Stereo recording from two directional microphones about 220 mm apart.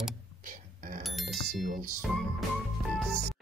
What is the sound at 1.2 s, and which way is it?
Speech, centre (ahead or behind).